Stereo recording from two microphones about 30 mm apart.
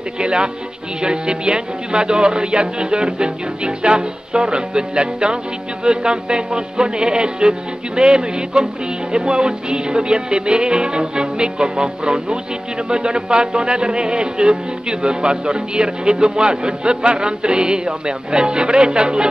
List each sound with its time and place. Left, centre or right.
0.2 s speech: right